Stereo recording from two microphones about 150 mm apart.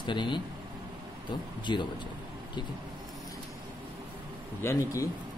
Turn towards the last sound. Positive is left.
turn(degrees=20)  # may be behind; listen again after turning